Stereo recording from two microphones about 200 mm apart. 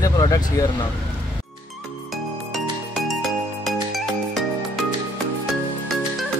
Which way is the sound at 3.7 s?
Centre (ahead or behind).